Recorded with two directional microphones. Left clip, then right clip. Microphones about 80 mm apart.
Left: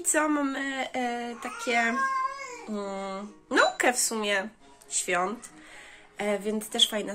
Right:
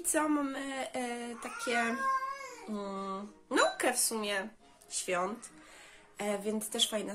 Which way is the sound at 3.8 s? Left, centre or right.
Centre.